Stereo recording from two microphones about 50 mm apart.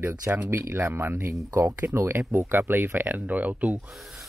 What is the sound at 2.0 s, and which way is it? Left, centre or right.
Speech, right.